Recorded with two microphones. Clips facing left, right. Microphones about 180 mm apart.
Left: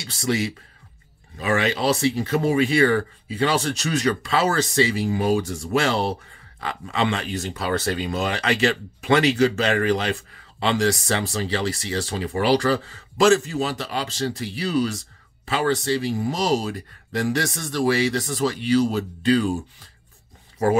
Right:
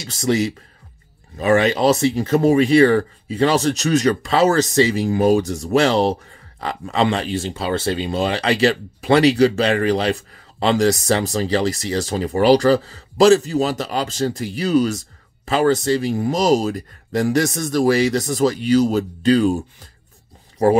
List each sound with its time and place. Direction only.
0.0 s speech: 40° right (ahead or behind)